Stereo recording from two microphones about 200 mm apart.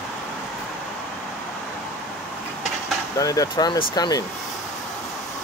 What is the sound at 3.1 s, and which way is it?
Speech, 15° left (ahead or behind).